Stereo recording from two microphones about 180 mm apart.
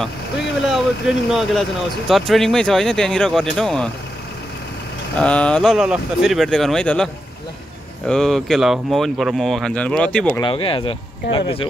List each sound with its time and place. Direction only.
0.7 s speech: centre (ahead or behind)
5.1 s speech: 5° left (ahead or behind)
8.1 s speech: centre (ahead or behind)
10.4 s speech: 30° left (ahead or behind)